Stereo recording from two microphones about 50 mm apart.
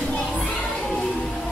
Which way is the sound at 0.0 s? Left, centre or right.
Left.